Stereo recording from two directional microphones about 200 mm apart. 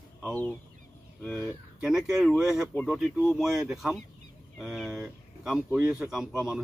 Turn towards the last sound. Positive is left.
turn(degrees=15)  # may be behind; listen again after turning